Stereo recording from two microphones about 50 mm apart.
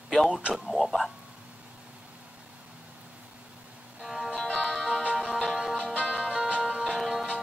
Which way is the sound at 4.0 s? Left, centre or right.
Centre.